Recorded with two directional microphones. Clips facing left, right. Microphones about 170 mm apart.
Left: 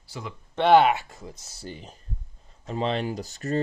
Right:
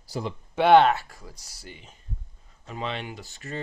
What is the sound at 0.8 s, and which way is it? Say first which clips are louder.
Speech: even; 20° left (ahead or behind).